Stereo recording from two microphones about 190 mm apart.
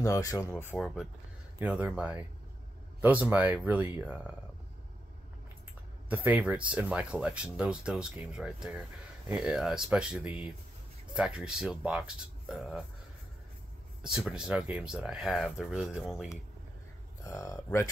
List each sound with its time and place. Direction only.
0.0 s speech: 15° left (ahead or behind)
1.6 s speech: 10° right (ahead or behind)
6.0 s speech: 10° right (ahead or behind)
14.0 s speech: 5° right (ahead or behind)
17.2 s speech: 15° left (ahead or behind)